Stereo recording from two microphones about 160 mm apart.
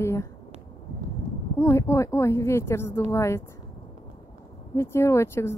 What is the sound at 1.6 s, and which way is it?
Speech, 20° left (ahead or behind).